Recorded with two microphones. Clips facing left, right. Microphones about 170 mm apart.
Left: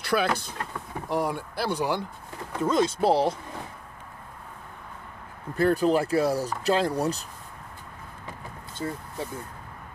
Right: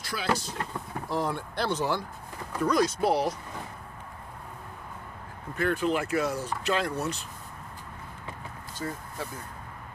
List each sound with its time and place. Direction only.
0.0 s speech: 60° left (ahead or behind)
1.0 s speech: 15° left (ahead or behind)
2.6 s speech: 25° left (ahead or behind)
5.6 s speech: 35° left (ahead or behind)
8.8 s speech: 25° left (ahead or behind)